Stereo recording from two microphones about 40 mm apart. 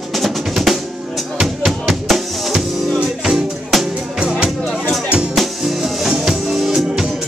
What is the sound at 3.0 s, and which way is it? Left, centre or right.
Music, right.